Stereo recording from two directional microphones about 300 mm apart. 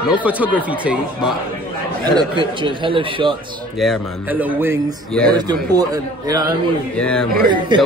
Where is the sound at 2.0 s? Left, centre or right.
Centre.